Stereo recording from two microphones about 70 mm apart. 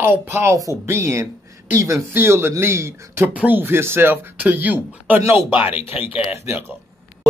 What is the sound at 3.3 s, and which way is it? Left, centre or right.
Speech, centre.